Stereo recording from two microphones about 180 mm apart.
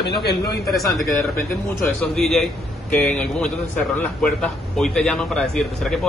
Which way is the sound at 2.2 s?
Centre (ahead or behind).